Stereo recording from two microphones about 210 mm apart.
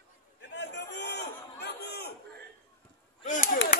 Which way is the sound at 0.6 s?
55° left (ahead or behind).